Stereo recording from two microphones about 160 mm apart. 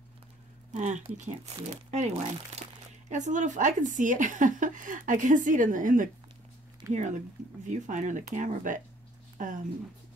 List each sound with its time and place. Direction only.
0.7 s a woman's voice: 50° right (ahead or behind)